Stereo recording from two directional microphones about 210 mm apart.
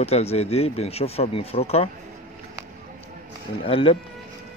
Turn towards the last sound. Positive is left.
turn(degrees=25)  # may be behind; listen again after turning